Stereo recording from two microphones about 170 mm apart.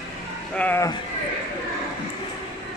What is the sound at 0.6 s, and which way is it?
Speech, 10° left (ahead or behind).